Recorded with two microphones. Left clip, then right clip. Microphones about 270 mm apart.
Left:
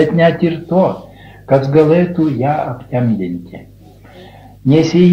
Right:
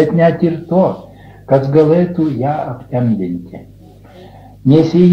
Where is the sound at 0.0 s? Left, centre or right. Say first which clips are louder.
Even; left.